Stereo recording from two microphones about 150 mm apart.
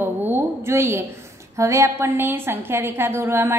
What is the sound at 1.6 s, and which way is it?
A woman's voice, 20° right (ahead or behind).